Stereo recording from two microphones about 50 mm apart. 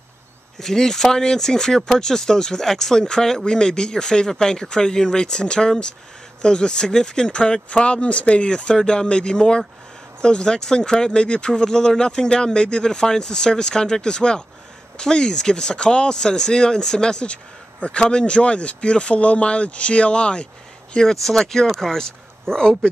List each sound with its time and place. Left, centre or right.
0.6 s speech: centre